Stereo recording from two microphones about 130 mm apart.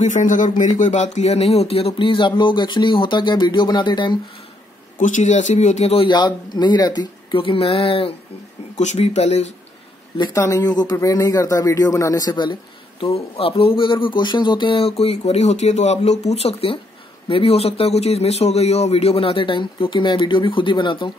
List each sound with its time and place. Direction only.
0.0 s speech: 70° left (ahead or behind)
0.7 s speech: 65° left (ahead or behind); by 4.2 s 35° left (ahead or behind)
4.9 s speech: 70° left (ahead or behind); by 6.0 s 55° left (ahead or behind)
6.0 s speech: 35° left (ahead or behind)
8.7 s speech: 60° left (ahead or behind)
10.1 s speech: 35° left (ahead or behind)
13.1 s a man's voice: 45° left (ahead or behind)